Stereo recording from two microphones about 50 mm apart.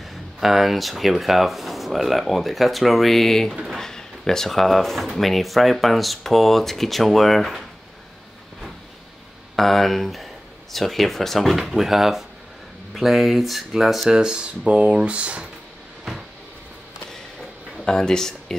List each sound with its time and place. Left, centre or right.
0.0 s speech: centre
9.6 s speech: centre
14.1 s speech: centre
17.8 s speech: centre